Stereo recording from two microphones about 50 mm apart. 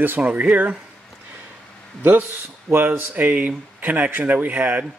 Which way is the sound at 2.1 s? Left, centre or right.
Right.